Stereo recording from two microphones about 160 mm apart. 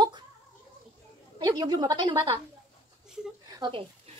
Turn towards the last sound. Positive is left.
turn(degrees=-30)  # may be behind; listen again after turning